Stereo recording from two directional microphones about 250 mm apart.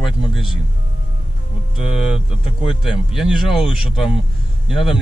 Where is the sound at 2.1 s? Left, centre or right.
Left.